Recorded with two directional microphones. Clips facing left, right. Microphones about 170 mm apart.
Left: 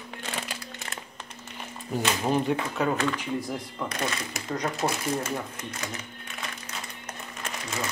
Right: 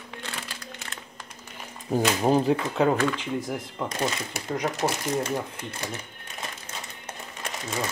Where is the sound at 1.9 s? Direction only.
40° right (ahead or behind).